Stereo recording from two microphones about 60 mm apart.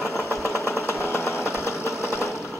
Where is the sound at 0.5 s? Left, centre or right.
Left.